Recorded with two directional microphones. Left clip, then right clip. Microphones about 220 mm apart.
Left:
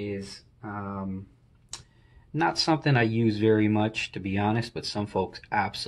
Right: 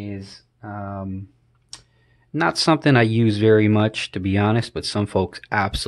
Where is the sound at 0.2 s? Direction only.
35° right (ahead or behind).